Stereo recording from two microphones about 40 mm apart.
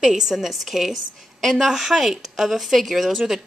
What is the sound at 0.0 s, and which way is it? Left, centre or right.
A woman's voice, centre.